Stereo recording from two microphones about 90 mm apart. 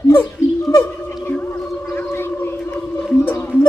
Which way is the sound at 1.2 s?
15° left (ahead or behind).